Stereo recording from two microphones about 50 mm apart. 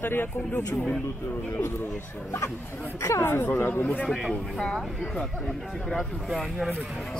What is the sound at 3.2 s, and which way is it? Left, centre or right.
Speech, left.